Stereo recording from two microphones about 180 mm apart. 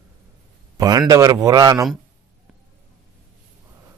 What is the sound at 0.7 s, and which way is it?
Speech, 20° right (ahead or behind).